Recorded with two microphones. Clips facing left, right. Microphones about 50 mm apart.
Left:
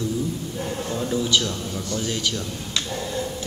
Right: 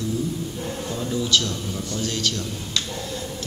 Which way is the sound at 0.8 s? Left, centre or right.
Centre.